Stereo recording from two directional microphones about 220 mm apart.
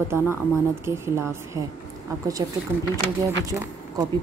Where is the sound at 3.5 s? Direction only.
15° right (ahead or behind).